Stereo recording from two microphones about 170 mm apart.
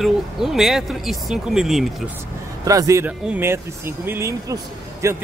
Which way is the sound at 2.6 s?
20° right (ahead or behind).